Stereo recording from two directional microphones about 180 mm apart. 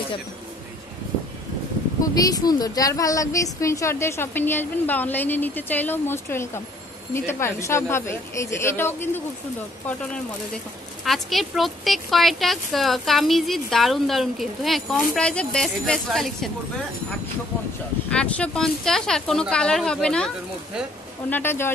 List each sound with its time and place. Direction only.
2.1 s a woman's voice: 20° left (ahead or behind)
11.1 s speech: centre (ahead or behind)
18.1 s speech: 5° left (ahead or behind)
21.3 s a woman's voice: 10° left (ahead or behind)